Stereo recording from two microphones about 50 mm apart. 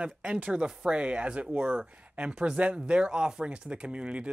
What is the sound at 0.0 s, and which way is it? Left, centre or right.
Speech, right.